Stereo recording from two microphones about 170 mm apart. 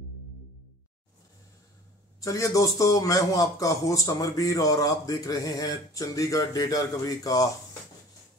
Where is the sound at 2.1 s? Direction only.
20° left (ahead or behind).